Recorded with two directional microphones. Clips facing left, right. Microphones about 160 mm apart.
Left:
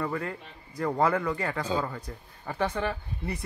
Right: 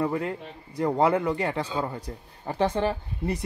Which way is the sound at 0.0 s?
20° right (ahead or behind).